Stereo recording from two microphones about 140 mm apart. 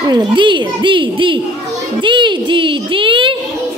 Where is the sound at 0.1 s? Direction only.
30° right (ahead or behind).